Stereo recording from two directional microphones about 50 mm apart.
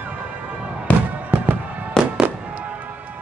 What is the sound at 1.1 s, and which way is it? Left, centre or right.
Fireworks, right.